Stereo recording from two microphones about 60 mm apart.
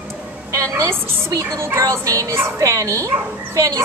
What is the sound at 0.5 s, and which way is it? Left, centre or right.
A woman's voice, right.